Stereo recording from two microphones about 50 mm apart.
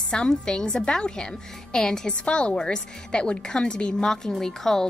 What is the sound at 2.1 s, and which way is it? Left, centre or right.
A woman's voice, left.